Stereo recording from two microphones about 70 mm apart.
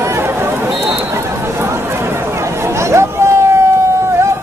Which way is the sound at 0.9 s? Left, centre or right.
Right.